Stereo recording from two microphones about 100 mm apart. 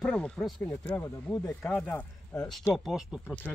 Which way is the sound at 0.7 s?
20° left (ahead or behind).